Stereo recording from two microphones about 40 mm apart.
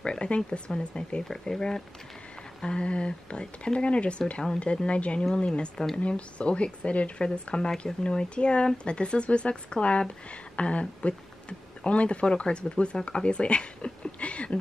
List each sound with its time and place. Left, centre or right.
0.0 s speech: left
2.6 s speech: left